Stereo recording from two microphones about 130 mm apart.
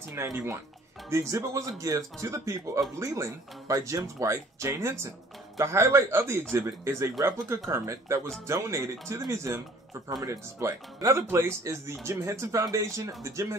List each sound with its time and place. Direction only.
0.2 s speech: 20° right (ahead or behind)